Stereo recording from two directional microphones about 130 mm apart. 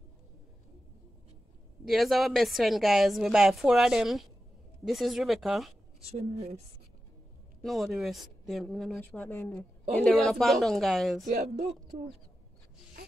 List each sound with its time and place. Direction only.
1.9 s speech: centre (ahead or behind)
5.9 s a woman's voice: 50° right (ahead or behind)
7.6 s speech: centre (ahead or behind)
10.1 s speech: centre (ahead or behind)